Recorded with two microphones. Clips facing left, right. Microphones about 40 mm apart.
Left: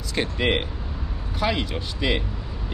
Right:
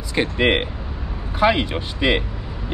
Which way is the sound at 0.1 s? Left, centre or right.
Right.